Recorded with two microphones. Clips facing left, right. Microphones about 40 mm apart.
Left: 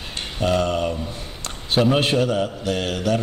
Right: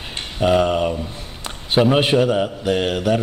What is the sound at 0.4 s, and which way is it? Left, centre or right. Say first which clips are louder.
A man's voice: right 4 dB; centre.